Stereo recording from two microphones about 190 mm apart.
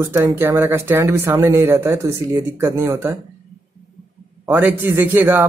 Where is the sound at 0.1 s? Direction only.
15° right (ahead or behind).